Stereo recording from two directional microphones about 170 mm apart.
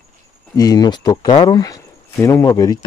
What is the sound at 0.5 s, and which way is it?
Speech, 20° left (ahead or behind).